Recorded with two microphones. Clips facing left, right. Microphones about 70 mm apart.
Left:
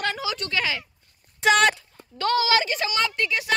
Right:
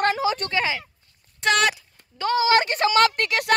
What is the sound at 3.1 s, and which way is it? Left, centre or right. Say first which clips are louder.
Speech: right 3 dB; right.